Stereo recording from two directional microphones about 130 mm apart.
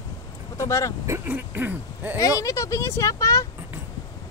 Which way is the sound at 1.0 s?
20° right (ahead or behind).